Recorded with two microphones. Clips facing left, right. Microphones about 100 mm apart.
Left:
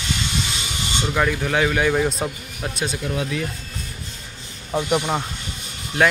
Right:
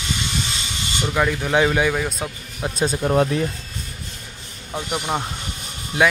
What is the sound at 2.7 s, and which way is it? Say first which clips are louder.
Speech: right 8 dB; 40° right (ahead or behind).